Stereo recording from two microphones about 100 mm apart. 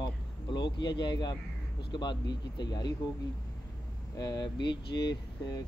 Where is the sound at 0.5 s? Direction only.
50° left (ahead or behind).